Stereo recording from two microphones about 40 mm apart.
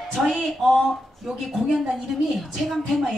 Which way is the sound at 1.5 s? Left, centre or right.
Centre.